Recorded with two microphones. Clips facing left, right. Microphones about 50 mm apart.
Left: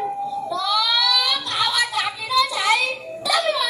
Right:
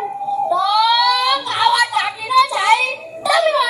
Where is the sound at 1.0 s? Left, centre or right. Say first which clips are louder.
Right 6 dB; right.